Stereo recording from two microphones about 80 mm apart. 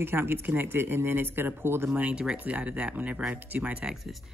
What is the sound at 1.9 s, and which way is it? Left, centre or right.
Speech, centre.